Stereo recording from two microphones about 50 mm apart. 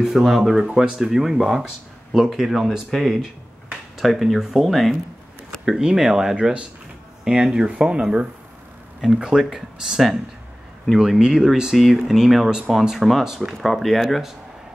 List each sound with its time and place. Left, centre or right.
0.0 s speech: centre
5.7 s speech: centre
9.2 s speech: centre
11.7 s speech: centre